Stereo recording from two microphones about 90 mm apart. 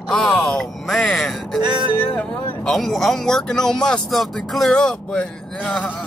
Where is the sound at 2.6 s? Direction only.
5° left (ahead or behind).